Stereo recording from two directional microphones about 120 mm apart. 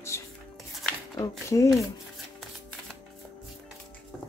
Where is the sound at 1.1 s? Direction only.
25° left (ahead or behind).